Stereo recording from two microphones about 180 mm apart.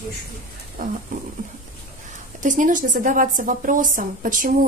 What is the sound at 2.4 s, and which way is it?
A woman's voice, 45° right (ahead or behind).